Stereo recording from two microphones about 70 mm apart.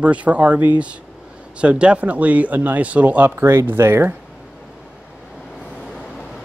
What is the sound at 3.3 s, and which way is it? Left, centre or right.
Speech, right.